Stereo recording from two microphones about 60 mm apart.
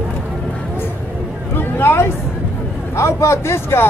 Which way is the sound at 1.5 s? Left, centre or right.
Left.